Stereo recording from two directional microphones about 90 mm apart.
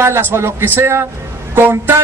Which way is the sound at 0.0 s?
25° right (ahead or behind).